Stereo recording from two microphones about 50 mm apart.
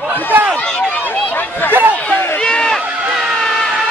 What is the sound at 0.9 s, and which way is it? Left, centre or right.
Run, left.